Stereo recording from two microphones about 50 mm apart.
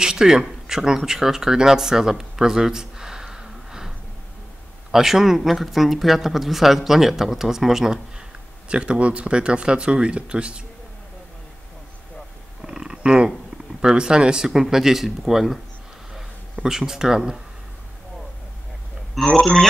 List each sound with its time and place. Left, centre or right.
0.0 s speech: centre
4.9 s speech: centre
8.6 s speech: right
12.6 s a sound: centre
13.7 s speech: centre
16.6 s speech: centre
19.1 s a man's voice: centre